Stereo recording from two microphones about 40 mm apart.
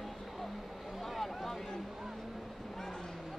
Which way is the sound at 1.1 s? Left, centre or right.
Centre.